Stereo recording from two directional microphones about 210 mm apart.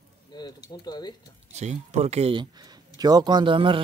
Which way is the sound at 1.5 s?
35° right (ahead or behind).